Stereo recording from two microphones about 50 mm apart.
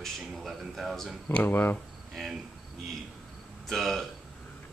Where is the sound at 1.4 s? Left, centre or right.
Left.